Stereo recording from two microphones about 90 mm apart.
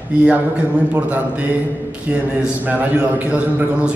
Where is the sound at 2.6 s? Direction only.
15° right (ahead or behind).